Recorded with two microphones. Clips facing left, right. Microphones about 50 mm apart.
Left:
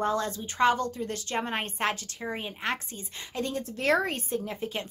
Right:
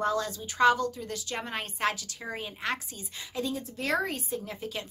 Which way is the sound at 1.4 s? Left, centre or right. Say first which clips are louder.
Left 4 dB; left.